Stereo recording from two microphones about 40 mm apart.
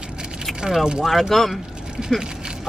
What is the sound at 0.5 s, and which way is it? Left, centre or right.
Speech, centre.